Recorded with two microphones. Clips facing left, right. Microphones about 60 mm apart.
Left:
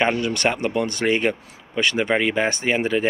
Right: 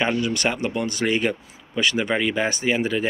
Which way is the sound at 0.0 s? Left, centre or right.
Left.